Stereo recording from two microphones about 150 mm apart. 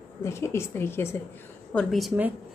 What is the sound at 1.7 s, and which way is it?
Speech, 5° left (ahead or behind).